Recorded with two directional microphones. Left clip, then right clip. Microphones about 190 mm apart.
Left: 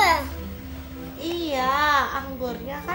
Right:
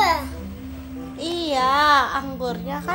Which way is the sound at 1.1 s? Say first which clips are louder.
Right 3 dB; 50° right (ahead or behind).